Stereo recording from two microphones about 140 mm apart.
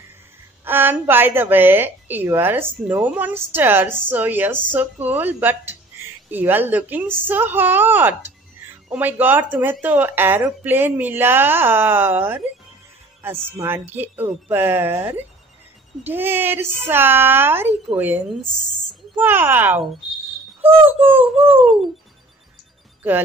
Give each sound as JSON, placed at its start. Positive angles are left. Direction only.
{"t": 0.7, "sound": "speech", "side_deg": -15}